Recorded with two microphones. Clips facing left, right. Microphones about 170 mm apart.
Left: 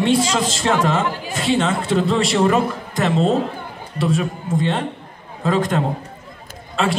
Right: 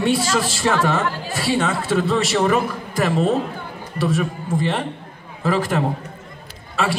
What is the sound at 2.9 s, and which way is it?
Speech, 20° left (ahead or behind).